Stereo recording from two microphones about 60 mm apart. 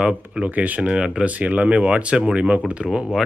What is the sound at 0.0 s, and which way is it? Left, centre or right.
Speech, centre.